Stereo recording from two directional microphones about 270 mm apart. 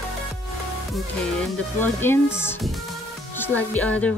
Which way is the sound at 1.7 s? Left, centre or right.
Centre.